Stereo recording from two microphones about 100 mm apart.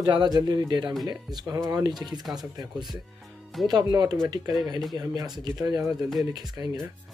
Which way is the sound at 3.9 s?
40° right (ahead or behind).